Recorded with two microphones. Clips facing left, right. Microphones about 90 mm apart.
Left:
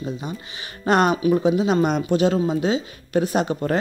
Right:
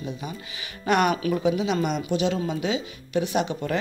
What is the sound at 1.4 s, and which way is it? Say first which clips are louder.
Speech: left 5 dB; 35° left (ahead or behind).